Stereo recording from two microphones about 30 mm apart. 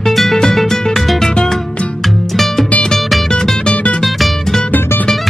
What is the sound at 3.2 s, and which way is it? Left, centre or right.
Music, centre.